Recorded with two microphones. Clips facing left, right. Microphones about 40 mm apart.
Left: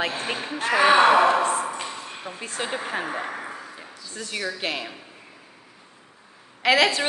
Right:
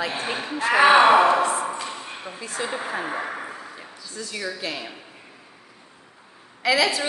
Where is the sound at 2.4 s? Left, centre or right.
Left.